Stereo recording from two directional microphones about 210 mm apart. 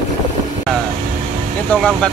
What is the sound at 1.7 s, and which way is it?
Speech, 5° left (ahead or behind).